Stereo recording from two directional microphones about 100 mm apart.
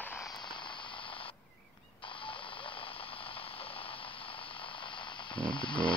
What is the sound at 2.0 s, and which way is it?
Radio, 60° left (ahead or behind).